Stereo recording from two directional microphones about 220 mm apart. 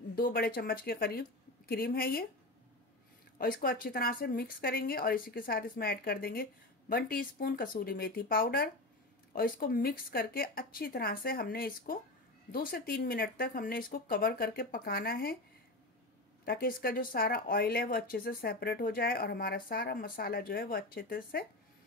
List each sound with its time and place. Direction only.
0.1 s speech: 40° left (ahead or behind)
3.3 s speech: 40° left (ahead or behind)
16.4 s speech: 40° left (ahead or behind)